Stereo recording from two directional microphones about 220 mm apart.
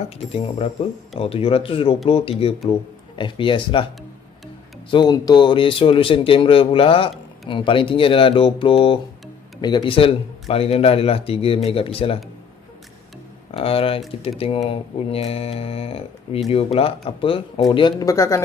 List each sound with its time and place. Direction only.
0.3 s speech: 25° left (ahead or behind)
4.9 s speech: 20° left (ahead or behind)
13.5 s speech: 25° left (ahead or behind)